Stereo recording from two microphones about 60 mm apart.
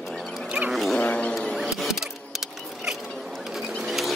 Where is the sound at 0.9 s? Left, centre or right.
Left.